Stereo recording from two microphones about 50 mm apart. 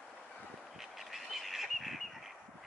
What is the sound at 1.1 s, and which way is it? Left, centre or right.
Bird, centre.